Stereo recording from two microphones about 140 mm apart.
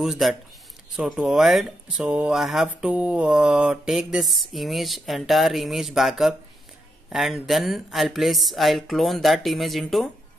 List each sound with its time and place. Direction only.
0.0 s speech: centre (ahead or behind)